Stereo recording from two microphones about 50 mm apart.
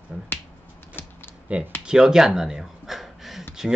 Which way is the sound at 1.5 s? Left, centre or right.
Right.